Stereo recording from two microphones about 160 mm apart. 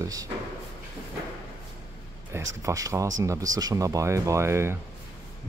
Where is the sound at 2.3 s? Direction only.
20° right (ahead or behind).